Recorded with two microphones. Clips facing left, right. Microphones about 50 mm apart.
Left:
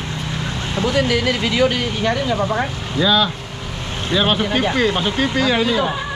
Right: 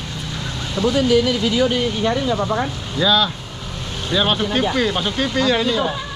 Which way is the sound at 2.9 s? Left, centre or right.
Centre.